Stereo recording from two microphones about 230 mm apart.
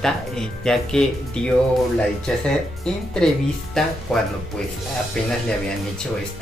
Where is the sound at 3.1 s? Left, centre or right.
Centre.